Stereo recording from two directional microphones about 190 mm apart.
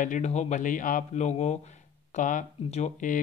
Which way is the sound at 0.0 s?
40° left (ahead or behind).